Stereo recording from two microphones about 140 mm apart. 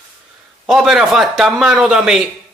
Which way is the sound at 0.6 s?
Centre (ahead or behind).